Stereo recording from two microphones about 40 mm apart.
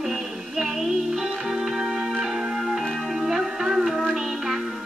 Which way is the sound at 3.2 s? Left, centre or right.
Centre.